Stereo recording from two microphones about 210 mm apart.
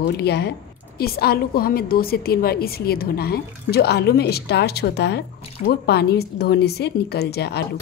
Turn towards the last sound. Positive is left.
turn(degrees=50)  # may be behind; listen again after turning